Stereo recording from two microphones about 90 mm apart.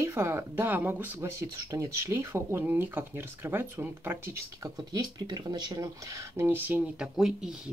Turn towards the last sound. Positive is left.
turn(degrees=-5)  # may be behind; listen again after turning